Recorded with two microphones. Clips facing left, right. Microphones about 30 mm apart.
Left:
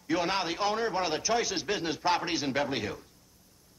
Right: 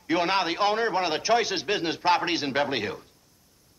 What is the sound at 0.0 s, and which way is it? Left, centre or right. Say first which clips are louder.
A man's voice: right 5 dB; right.